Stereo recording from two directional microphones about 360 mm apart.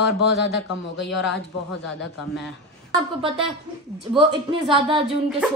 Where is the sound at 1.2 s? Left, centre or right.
Left.